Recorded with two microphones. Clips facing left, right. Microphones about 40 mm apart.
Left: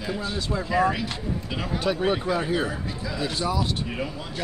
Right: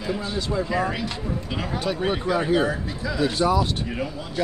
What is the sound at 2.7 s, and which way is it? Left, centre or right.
Speech, right.